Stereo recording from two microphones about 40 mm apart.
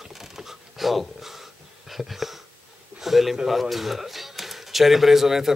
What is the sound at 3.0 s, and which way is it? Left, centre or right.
Speech, centre.